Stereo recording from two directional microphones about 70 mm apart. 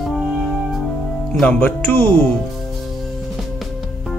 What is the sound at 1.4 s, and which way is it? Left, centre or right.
Speech, left.